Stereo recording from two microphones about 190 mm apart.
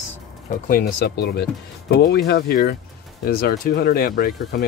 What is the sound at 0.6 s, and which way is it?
Speech, 50° left (ahead or behind).